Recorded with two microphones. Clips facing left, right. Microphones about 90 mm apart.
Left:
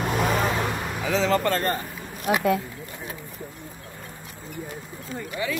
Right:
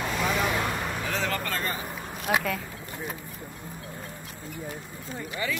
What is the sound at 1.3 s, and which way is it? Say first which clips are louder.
Speech: left 8 dB; 55° left (ahead or behind).